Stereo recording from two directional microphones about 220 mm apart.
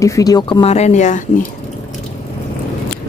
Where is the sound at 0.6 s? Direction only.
30° left (ahead or behind).